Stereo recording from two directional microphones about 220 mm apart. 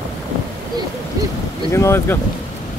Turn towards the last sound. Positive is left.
turn(degrees=10)  # may be behind; listen again after turning